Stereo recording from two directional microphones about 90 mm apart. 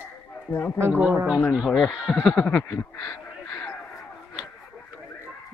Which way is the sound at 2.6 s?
30° left (ahead or behind).